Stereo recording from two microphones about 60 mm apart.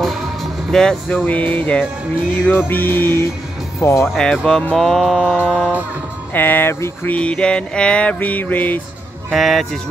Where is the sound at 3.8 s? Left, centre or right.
Left.